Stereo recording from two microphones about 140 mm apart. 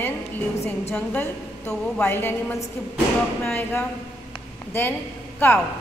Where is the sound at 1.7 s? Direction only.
10° left (ahead or behind).